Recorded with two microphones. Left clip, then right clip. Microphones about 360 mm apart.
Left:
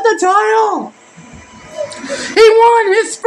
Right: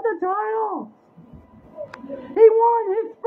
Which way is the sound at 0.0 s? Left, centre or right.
Right.